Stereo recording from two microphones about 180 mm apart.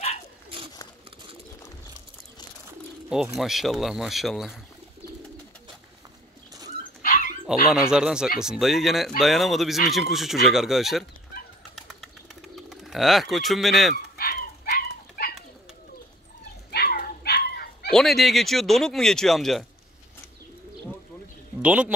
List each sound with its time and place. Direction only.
3.3 s speech: centre (ahead or behind)
7.0 s dog: 45° left (ahead or behind)
7.9 s speech: 5° right (ahead or behind)
11.7 s bird: centre (ahead or behind)
14.1 s pigeon: 55° left (ahead or behind)
16.7 s dog: 55° left (ahead or behind)
17.9 s speech: centre (ahead or behind)
21.5 s a man's voice: 5° right (ahead or behind)